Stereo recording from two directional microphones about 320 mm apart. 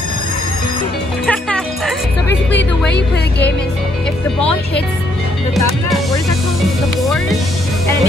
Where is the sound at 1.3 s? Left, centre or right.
Centre.